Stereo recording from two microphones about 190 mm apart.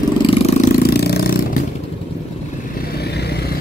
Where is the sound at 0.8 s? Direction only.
60° left (ahead or behind).